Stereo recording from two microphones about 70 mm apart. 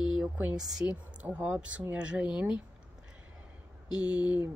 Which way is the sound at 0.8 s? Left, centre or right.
Right.